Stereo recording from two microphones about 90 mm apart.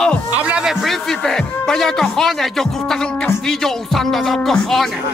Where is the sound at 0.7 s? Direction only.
5° left (ahead or behind).